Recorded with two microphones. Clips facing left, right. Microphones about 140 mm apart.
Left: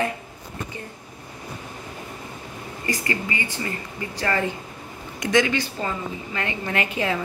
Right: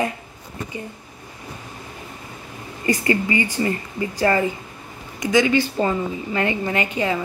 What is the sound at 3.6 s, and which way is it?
Speech, 30° right (ahead or behind).